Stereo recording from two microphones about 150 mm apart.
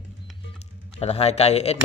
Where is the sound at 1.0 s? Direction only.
45° left (ahead or behind).